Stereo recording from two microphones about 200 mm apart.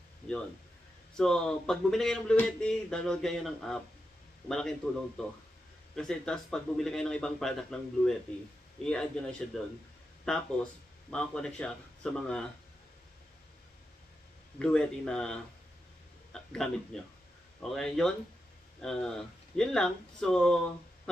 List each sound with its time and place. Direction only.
1.1 s speech: 5° left (ahead or behind)
8.8 s speech: 5° left (ahead or behind)
14.6 s a man's voice: 5° left (ahead or behind)